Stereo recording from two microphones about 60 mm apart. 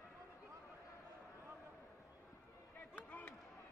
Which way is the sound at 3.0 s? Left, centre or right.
Left.